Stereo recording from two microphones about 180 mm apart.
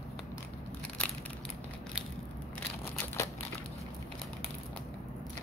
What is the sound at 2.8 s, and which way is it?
Crumpling, 15° left (ahead or behind).